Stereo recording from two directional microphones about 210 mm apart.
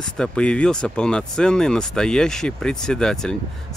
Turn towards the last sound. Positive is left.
turn(degrees=5)  # may be behind; listen again after turning